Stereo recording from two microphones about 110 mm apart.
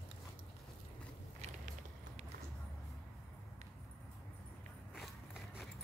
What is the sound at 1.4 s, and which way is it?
Vehicle, 90° right.